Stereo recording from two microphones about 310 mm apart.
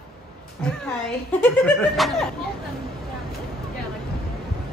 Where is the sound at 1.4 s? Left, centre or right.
Centre.